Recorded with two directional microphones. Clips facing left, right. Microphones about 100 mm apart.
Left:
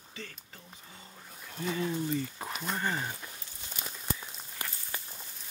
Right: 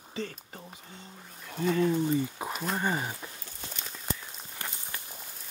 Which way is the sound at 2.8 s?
15° right (ahead or behind).